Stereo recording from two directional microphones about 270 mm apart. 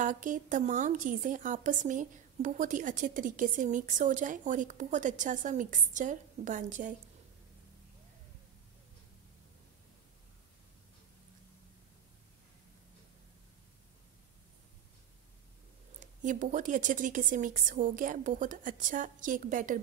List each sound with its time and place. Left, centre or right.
0.0 s a woman's voice: right
16.0 s a woman's voice: right